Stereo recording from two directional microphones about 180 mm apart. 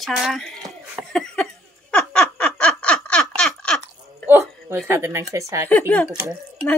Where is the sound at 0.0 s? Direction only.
Centre (ahead or behind).